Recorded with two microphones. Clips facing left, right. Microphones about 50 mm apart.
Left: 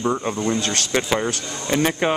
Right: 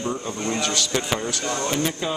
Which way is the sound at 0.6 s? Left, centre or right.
Left.